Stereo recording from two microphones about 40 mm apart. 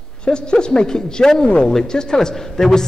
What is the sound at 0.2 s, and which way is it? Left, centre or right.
A man's voice, left.